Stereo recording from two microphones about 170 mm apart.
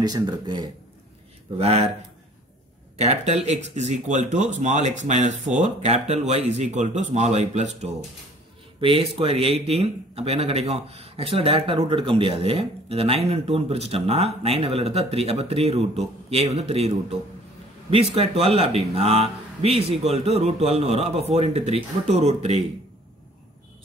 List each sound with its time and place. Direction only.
0.0 s speech: 25° right (ahead or behind)
3.0 s a man's voice: 40° right (ahead or behind)